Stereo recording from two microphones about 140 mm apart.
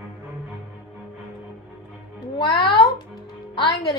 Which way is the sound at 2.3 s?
35° left (ahead or behind).